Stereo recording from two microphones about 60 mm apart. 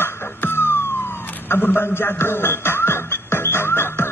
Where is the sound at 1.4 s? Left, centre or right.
Left.